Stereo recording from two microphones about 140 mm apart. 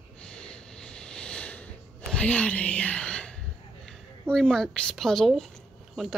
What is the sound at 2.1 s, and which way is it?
Speech, 10° left (ahead or behind).